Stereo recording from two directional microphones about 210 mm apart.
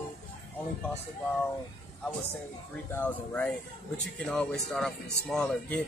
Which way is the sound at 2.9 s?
10° left (ahead or behind).